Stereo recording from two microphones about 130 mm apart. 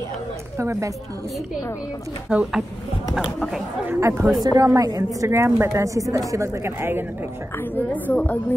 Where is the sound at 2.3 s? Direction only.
5° right (ahead or behind).